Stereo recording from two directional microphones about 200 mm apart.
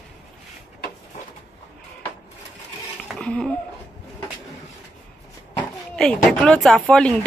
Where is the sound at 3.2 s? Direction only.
5° left (ahead or behind).